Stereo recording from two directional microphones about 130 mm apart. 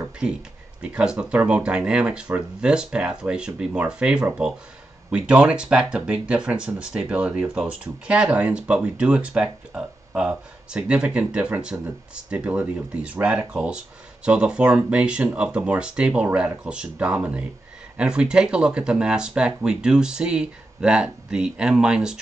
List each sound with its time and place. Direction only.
0.2 s speech: 5° right (ahead or behind)